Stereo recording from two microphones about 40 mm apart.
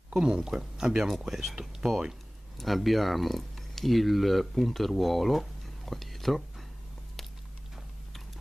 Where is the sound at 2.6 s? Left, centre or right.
Centre.